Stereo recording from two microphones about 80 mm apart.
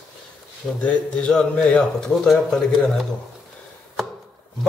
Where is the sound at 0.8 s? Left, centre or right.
Centre.